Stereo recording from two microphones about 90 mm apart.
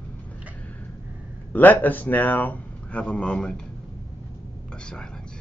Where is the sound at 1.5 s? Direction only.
20° left (ahead or behind).